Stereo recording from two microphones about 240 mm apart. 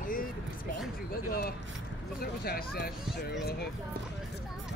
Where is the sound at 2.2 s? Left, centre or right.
Left.